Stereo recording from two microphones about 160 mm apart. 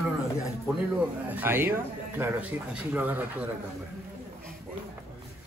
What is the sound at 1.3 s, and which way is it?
Speech, 15° right (ahead or behind).